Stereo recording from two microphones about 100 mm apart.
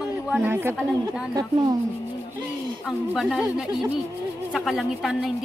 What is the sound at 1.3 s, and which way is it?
Speech, 40° right (ahead or behind).